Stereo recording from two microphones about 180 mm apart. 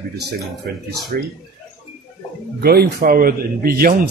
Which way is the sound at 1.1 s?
55° right (ahead or behind).